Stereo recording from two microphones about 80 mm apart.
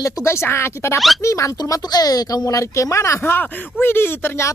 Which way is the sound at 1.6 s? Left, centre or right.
Left.